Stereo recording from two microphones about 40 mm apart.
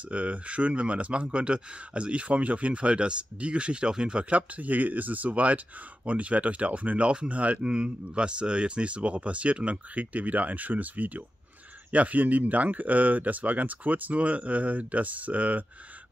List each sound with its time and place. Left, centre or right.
0.1 s speech: right